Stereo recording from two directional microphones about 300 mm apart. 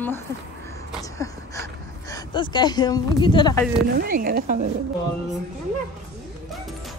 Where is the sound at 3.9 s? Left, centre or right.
Right.